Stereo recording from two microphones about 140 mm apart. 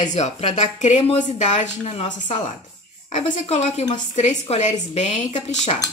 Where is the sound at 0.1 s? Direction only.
55° left (ahead or behind).